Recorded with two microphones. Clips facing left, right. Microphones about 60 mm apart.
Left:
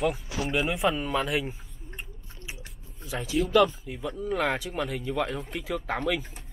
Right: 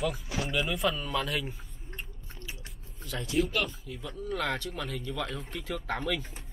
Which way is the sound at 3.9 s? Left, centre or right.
Centre.